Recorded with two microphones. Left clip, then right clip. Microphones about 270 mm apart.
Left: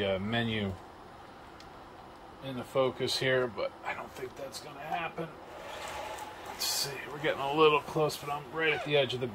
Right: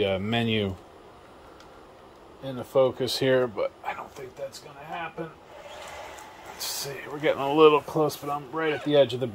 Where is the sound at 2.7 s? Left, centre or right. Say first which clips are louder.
Right 7 dB; right.